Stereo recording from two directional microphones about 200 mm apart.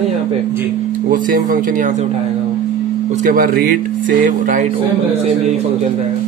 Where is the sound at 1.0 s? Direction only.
45° right (ahead or behind).